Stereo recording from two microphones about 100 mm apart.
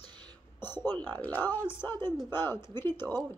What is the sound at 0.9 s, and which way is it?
Speech, 15° left (ahead or behind).